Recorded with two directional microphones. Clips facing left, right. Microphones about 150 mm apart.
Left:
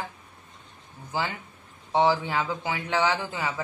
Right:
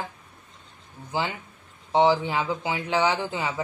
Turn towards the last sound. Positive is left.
turn(degrees=-20)  # may be behind; listen again after turning